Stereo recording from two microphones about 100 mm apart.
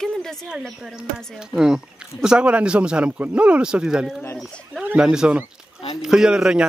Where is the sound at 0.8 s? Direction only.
5° right (ahead or behind).